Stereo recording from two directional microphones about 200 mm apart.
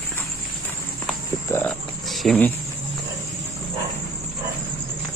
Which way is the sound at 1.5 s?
10° left (ahead or behind).